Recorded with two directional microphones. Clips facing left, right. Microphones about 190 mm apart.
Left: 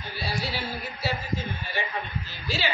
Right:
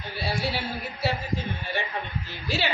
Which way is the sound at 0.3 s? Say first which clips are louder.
Right 3 dB; 55° right (ahead or behind).